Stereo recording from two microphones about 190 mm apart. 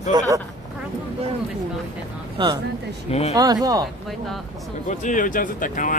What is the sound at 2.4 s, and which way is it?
Speech, 25° right (ahead or behind).